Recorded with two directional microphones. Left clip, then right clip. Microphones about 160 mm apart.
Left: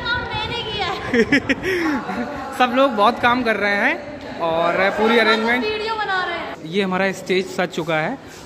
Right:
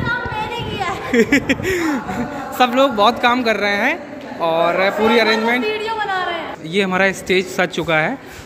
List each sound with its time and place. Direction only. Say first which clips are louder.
0.7 s a man's voice: right 3 dB; 10° right (ahead or behind)
5.6 s a sound: right 2 dB; 30° right (ahead or behind)
6.7 s a man's voice: right 4 dB; centre (ahead or behind)